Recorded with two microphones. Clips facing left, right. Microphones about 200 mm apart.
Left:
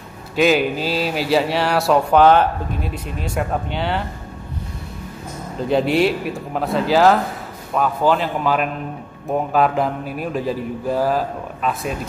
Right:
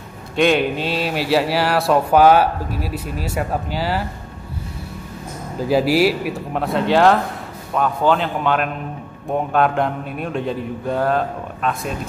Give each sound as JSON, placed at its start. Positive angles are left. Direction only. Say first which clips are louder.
{"t": 0.4, "sound": "speech", "louder": "even", "side_deg": 0}
{"t": 5.6, "sound": "speech", "louder": "right 1 dB", "side_deg": -5}